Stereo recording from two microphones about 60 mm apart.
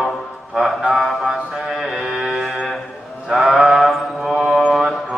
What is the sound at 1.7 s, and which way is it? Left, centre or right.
Speech, centre.